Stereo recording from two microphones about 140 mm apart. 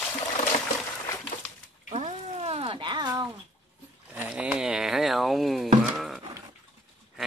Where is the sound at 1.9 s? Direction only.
45° right (ahead or behind); by 3.3 s 30° right (ahead or behind).